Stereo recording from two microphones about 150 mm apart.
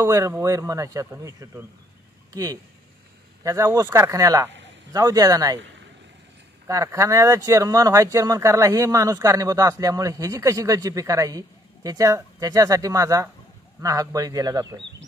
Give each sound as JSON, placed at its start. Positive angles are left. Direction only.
{"t": 0.0, "sound": "speech", "side_deg": -20}
{"t": 6.7, "sound": "speech", "side_deg": -20}